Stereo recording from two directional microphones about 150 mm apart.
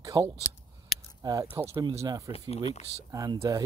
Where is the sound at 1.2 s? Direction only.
25° right (ahead or behind).